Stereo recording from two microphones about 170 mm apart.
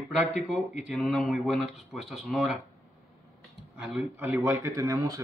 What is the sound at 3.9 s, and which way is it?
Speech, centre (ahead or behind).